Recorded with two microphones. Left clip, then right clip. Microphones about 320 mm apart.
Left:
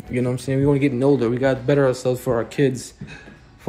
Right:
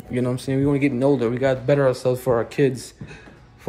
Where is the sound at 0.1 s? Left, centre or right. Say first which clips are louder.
Left 1 dB; centre.